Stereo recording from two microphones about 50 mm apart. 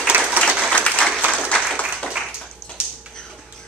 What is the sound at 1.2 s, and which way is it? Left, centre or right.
Applause, right.